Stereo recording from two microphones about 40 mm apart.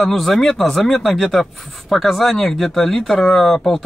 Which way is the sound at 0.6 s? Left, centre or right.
Centre.